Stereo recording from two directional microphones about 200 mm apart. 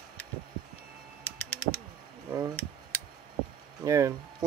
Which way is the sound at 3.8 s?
15° right (ahead or behind).